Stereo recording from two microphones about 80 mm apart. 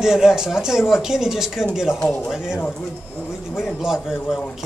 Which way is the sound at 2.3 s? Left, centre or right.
Centre.